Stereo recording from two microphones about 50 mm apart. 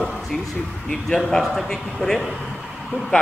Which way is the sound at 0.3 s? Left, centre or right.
Centre.